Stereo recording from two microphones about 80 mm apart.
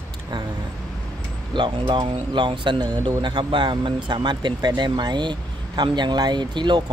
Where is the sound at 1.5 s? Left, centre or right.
Right.